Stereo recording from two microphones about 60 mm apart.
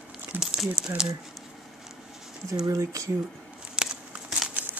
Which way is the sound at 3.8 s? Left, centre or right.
Centre.